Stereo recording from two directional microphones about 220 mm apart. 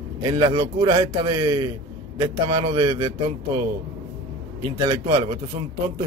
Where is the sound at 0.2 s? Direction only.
20° right (ahead or behind).